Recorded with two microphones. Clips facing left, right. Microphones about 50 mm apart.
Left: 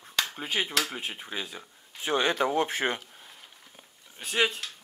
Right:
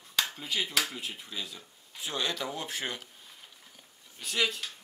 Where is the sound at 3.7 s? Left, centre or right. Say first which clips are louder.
Left 3 dB; left.